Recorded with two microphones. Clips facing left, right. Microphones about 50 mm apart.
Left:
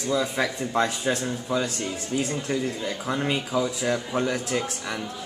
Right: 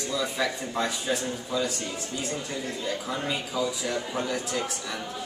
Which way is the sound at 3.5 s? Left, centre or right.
Left.